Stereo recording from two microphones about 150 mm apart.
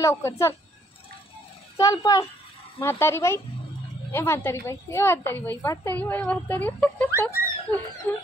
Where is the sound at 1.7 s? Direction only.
25° left (ahead or behind).